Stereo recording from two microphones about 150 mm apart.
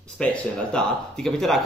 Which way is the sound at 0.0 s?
5° left (ahead or behind).